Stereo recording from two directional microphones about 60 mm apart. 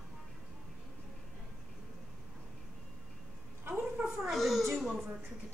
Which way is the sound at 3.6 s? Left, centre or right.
Right.